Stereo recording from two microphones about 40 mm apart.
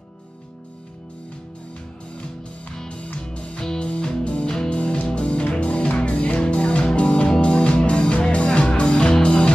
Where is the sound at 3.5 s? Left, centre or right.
Left.